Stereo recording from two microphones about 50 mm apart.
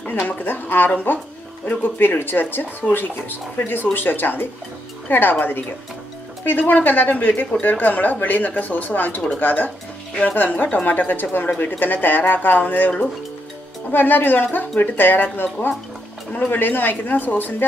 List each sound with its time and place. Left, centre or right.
0.0 s speech: left
13.9 s speech: left